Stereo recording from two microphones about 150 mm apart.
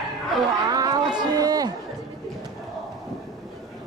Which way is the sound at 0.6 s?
25° right (ahead or behind).